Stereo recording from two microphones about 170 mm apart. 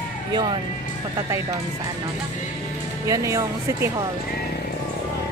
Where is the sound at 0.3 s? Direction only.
25° right (ahead or behind).